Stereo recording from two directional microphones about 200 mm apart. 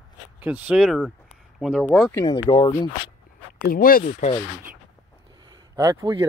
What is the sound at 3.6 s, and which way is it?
Speech, 45° left (ahead or behind).